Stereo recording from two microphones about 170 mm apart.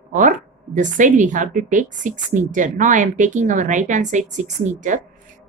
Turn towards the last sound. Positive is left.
turn(degrees=-50)  # may be behind; listen again after turning